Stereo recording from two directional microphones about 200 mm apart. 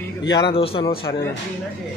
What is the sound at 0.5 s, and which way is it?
Speech, 30° left (ahead or behind).